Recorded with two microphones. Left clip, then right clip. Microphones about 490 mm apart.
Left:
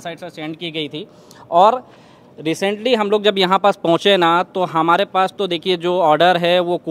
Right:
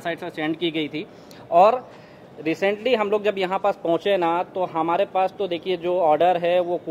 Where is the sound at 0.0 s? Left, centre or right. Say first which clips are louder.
Right 2 dB; left.